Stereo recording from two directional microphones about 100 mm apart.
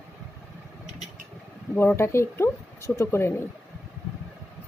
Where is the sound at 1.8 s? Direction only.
25° left (ahead or behind).